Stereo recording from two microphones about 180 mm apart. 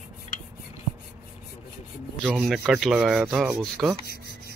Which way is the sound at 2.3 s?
Centre (ahead or behind).